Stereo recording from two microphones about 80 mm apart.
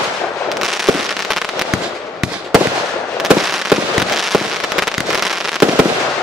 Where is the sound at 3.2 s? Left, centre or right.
Centre.